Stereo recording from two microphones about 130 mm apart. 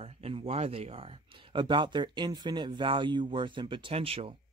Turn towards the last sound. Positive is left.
turn(degrees=-45)  # may be behind; listen again after turning